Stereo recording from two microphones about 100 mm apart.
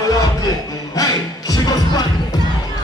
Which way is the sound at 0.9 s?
35° left (ahead or behind).